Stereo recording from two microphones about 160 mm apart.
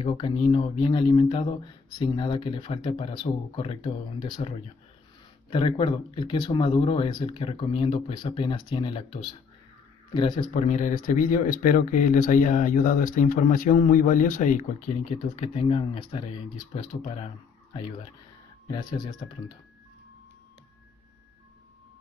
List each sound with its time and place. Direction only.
0.0 s speech: 35° left (ahead or behind)
10.5 s speech: 50° left (ahead or behind)
18.7 s speech: 30° left (ahead or behind)